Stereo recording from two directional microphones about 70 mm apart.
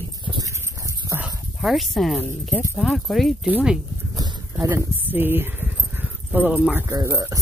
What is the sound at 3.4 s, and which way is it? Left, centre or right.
Speech, centre.